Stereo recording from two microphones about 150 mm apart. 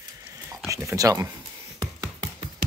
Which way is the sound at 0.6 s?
20° right (ahead or behind).